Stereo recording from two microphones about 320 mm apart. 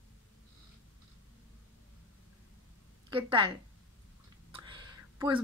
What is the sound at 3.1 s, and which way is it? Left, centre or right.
Speech, centre.